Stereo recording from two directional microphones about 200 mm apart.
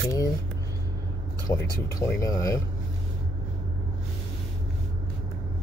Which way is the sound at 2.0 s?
15° left (ahead or behind).